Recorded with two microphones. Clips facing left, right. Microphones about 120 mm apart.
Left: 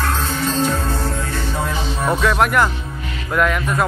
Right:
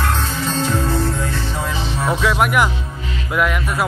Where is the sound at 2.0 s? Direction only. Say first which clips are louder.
Left 1 dB; 5° right (ahead or behind).